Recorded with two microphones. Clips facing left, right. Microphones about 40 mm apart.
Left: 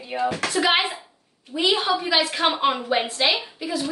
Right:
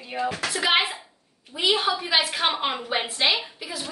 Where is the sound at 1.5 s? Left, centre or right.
Centre.